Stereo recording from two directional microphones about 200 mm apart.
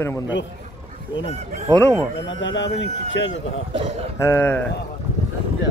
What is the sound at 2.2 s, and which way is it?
Speech, 65° left (ahead or behind).